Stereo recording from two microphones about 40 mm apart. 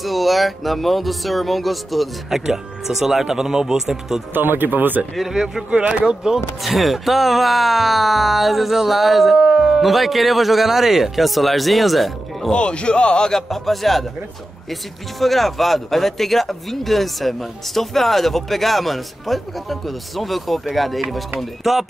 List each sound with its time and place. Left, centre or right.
0.0 s speech: centre
2.2 s speech: centre
4.3 s speech: right
5.1 s speech: centre
5.7 s speech: right
6.0 s speech: centre
6.6 s speech: centre
9.4 s speech: right
9.8 s speech: centre
12.5 s speech: left
13.5 s speech: centre